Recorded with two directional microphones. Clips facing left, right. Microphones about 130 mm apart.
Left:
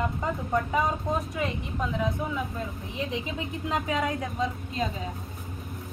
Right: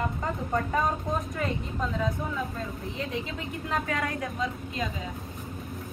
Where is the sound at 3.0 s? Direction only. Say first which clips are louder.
Left 3 dB; 20° left (ahead or behind).